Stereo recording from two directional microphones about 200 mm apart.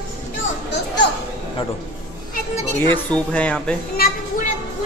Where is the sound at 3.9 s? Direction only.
45° left (ahead or behind).